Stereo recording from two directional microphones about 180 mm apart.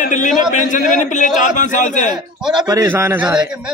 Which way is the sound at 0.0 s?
45° left (ahead or behind).